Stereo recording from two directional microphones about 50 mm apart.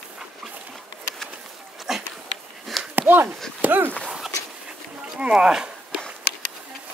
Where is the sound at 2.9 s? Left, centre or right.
Right.